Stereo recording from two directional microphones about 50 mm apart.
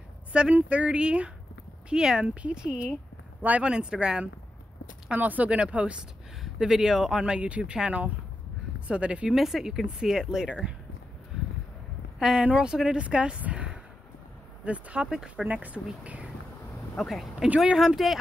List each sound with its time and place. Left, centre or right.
0.3 s speech: right
3.4 s speech: right
3.7 s speech: centre
5.1 s speech: right
6.4 s speech: centre
7.2 s speech: right
9.3 s speech: centre
12.2 s speech: centre
13.4 s a sound: right
14.6 s speech: right
15.4 s speech: right
16.9 s speech: centre